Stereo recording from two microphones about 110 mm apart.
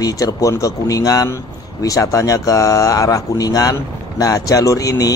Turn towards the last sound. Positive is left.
turn(degrees=30)  # may be behind; listen again after turning